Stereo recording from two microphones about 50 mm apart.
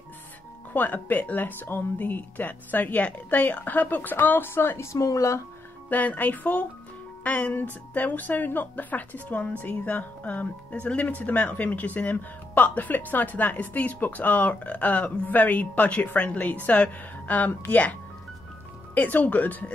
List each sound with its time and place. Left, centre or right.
0.7 s speech: left
4.8 s speech: left
5.9 s speech: left
18.9 s speech: left